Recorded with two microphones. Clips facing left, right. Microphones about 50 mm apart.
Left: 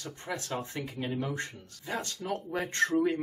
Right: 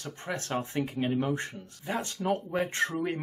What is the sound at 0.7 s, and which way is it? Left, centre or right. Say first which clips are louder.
Speech: right 5 dB; right.